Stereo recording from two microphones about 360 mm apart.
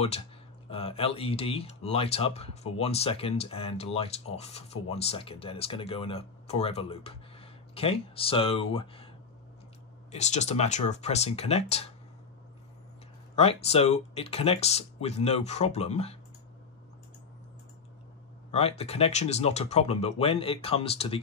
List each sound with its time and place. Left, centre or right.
0.7 s speech: centre
10.1 s speech: centre
13.4 s speech: centre
18.5 s speech: centre